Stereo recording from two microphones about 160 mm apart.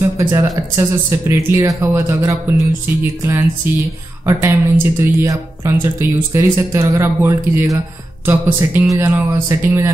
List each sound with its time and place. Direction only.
0.2 s speech: 20° right (ahead or behind)